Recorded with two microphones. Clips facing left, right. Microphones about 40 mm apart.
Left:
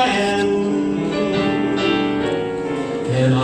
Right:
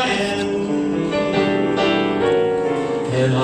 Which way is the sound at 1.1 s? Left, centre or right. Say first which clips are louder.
Right 2 dB; centre.